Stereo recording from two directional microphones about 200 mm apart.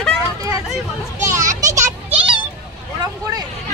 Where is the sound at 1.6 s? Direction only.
35° right (ahead or behind).